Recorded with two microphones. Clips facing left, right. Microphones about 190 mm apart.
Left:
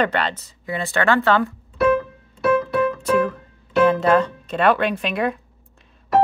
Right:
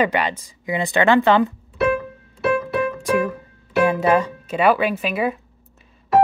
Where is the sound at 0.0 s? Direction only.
10° right (ahead or behind).